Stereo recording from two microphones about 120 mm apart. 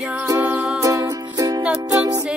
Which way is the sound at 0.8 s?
30° right (ahead or behind).